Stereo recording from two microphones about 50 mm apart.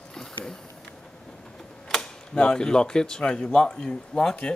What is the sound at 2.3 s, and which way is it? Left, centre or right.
Speech, centre.